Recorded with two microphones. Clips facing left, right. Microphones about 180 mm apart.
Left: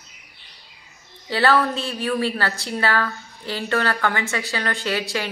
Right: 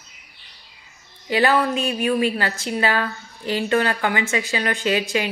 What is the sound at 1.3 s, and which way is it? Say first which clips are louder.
Speech: right 1 dB; 15° right (ahead or behind).